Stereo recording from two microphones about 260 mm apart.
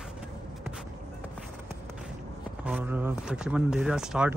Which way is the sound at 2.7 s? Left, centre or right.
Centre.